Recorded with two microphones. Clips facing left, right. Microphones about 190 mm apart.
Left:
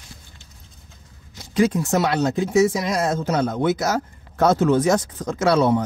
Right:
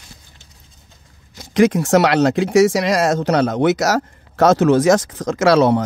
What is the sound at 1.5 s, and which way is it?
Speech, 80° right.